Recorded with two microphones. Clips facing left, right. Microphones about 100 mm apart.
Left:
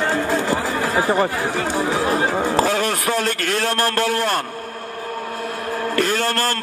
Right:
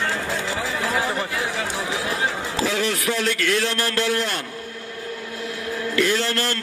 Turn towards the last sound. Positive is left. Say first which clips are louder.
# left 2 dB
turn(degrees=45)  # may be behind; listen again after turning